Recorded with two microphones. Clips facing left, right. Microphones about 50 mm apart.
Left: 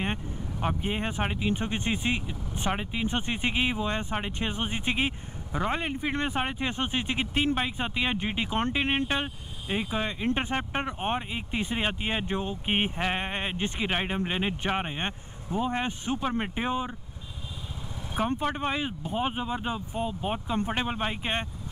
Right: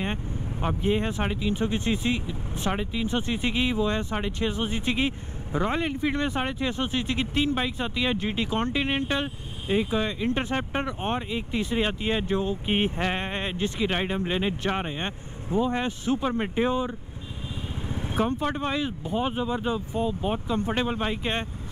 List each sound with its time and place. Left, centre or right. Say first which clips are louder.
0.6 s speech: right 4 dB; centre
17.8 s vehicle: right 7 dB; right
18.1 s speech: right 2 dB; centre